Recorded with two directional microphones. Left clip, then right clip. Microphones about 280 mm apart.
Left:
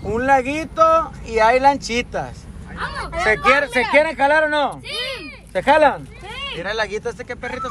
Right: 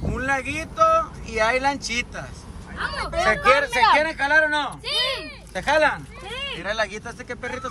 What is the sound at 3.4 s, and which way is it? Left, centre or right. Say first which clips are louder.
Speech: right 1 dB; left.